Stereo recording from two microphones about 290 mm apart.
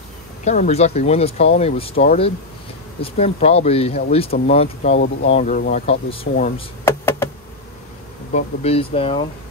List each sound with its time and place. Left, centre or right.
0.5 s speech: left
6.8 s a sound: centre
8.3 s speech: left